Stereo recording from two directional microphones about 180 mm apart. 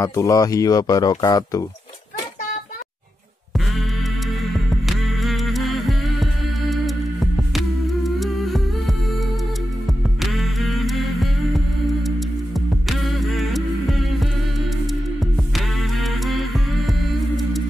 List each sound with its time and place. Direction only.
0.0 s speech: 15° left (ahead or behind)
4.4 s music: centre (ahead or behind)
10.2 s music: centre (ahead or behind)